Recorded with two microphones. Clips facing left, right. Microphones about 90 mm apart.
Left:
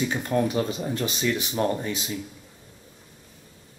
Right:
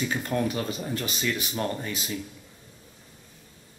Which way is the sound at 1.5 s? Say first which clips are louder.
Left 5 dB; 15° left (ahead or behind).